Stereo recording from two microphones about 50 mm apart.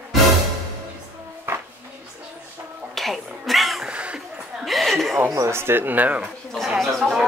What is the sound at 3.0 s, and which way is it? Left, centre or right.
Cat, centre.